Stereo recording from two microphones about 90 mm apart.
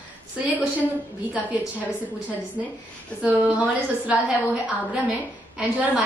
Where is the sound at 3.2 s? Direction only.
15° right (ahead or behind).